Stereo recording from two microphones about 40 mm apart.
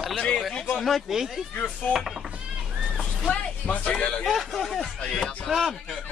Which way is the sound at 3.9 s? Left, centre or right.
Left.